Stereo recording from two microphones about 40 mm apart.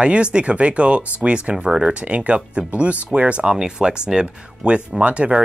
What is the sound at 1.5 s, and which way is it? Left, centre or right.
Speech, centre.